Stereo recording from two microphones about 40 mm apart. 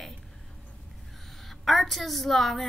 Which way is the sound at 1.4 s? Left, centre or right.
Centre.